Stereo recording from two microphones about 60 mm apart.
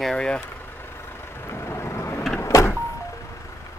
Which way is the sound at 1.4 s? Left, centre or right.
Left.